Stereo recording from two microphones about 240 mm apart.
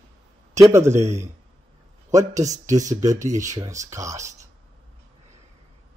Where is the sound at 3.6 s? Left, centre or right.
Centre.